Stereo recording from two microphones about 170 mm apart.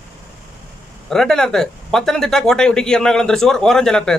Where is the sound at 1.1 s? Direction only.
5° left (ahead or behind).